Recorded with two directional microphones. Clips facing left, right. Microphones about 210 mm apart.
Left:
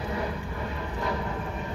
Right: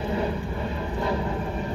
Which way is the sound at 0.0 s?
30° right (ahead or behind).